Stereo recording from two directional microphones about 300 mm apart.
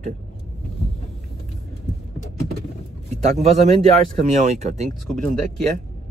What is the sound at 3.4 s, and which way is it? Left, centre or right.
Speech, right.